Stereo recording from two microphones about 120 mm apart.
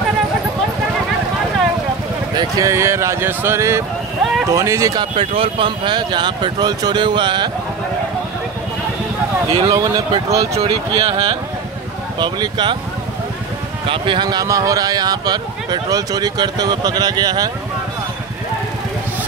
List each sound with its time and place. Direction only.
2.3 s speech: 30° right (ahead or behind)
5.1 s speech: 50° right (ahead or behind)
9.5 s speech: 55° right (ahead or behind)
9.8 s speech: 30° right (ahead or behind)
10.5 s speech: 55° right (ahead or behind)
12.2 s speech: 40° right (ahead or behind)
13.8 s speech: 45° right (ahead or behind)